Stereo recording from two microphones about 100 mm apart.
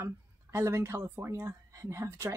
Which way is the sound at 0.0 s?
25° right (ahead or behind).